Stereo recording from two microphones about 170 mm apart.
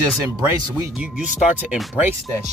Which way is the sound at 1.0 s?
5° right (ahead or behind).